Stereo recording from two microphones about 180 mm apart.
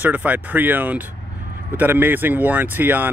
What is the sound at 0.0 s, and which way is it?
Speech, 10° right (ahead or behind).